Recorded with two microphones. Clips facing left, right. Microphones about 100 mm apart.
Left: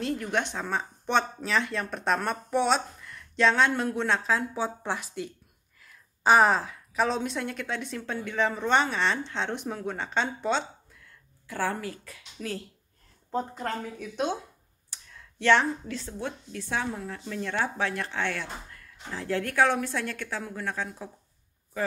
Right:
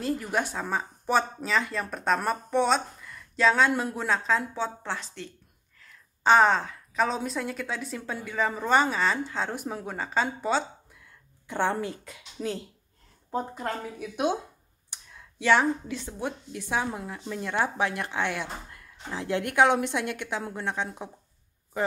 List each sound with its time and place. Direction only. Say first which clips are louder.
0.0 s speech: right 1 dB; 5° right (ahead or behind)
4.6 s a woman's voice: left 1 dB; 15° left (ahead or behind); by 10.6 s 5° right (ahead or behind)
11.4 s speech: right 3 dB; 25° right (ahead or behind)
13.3 s speech: even; 10° right (ahead or behind)